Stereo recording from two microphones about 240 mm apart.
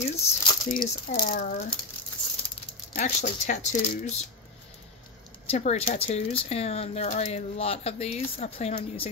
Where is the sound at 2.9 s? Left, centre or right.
Left.